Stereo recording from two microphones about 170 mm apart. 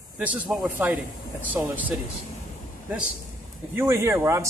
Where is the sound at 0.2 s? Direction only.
5° right (ahead or behind).